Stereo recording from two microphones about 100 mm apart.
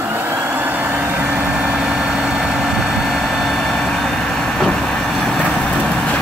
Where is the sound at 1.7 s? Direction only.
5° right (ahead or behind).